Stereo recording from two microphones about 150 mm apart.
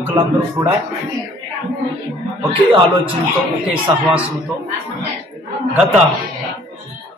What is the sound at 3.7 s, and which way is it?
Speech, 10° right (ahead or behind).